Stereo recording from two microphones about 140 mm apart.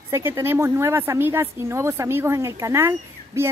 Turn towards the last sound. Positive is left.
turn(degrees=-20)  # may be behind; listen again after turning